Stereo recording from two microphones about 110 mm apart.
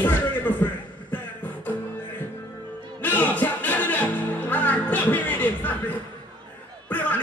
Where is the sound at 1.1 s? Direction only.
15° left (ahead or behind).